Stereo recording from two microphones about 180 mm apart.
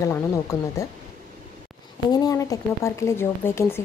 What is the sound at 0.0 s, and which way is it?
Speech, 15° left (ahead or behind).